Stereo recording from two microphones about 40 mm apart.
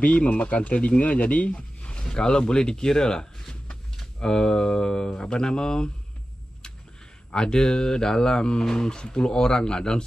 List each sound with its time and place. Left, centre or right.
0.0 s speech: left; by 5.9 s centre
7.2 s speech: centre